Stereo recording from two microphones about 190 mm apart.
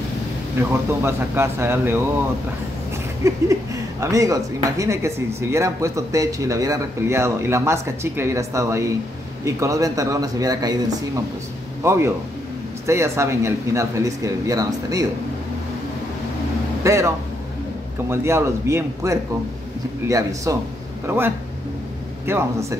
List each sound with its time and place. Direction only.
0.6 s speech: 15° right (ahead or behind)
3.2 s a man's voice: 15° right (ahead or behind)
16.8 s speech: 15° right (ahead or behind)
18.1 s speech: 15° right (ahead or behind)